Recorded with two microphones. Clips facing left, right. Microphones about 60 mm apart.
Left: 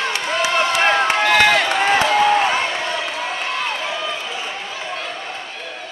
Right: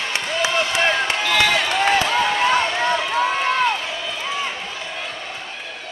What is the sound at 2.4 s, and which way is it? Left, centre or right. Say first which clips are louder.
Run: right 1 dB; centre.